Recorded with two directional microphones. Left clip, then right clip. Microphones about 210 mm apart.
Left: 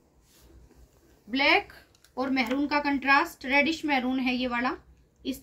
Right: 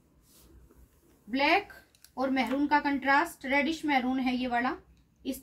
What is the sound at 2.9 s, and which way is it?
A woman's voice, 5° left (ahead or behind).